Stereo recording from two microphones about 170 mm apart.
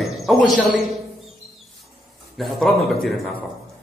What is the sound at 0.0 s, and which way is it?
Speech, centre (ahead or behind).